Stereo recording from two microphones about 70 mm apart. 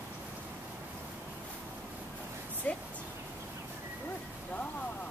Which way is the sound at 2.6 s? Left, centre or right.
Left.